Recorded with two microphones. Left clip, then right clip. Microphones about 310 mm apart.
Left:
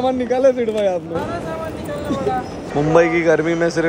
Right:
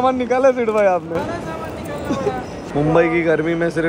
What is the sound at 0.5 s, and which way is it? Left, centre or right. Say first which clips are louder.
Speech: right 3 dB; centre.